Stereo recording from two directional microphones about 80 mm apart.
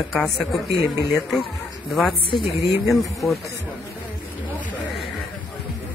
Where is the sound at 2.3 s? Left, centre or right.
Left.